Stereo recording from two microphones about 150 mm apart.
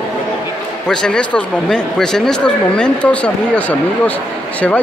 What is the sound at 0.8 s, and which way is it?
Speech, 5° left (ahead or behind).